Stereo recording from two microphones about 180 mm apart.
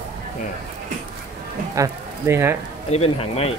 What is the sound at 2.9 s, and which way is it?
Speech, 35° left (ahead or behind).